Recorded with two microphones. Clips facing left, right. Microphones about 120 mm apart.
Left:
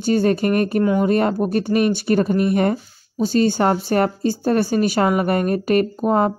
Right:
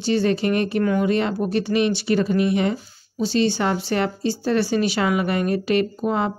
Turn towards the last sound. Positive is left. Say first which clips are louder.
# left 4 dB
turn(degrees=45)  # may be behind; listen again after turning